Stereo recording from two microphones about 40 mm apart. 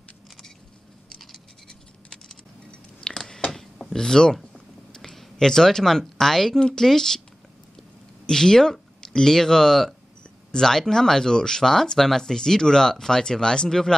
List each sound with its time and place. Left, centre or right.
1.1 s scratch: centre
3.0 s a sound: centre
3.8 s speech: centre
8.3 s speech: centre